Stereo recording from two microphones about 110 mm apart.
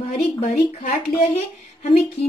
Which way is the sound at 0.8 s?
80° left.